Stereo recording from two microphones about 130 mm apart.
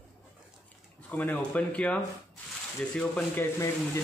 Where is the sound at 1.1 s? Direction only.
15° left (ahead or behind).